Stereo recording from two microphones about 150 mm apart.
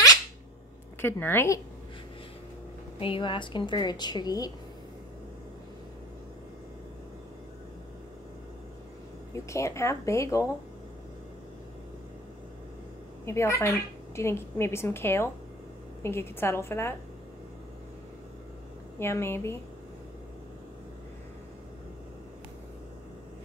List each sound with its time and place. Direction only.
1.0 s a woman's voice: 15° left (ahead or behind)
3.0 s a woman's voice: 35° left (ahead or behind)
9.3 s speech: 20° left (ahead or behind)
13.2 s a woman's voice: 20° left (ahead or behind)
18.9 s a woman's voice: 15° left (ahead or behind)